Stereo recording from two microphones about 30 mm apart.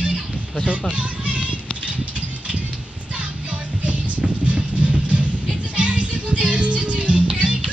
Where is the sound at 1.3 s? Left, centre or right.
Right.